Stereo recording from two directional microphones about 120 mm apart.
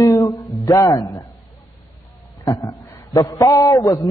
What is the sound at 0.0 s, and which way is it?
Music, 30° left (ahead or behind).